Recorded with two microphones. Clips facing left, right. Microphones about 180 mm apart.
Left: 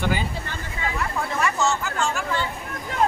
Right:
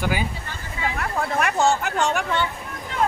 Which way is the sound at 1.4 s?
60° right (ahead or behind).